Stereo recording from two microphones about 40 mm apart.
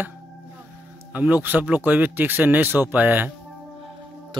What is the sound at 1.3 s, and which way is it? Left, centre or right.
Speech, right.